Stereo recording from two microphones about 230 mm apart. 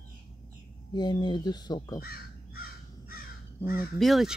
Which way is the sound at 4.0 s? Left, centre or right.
Centre.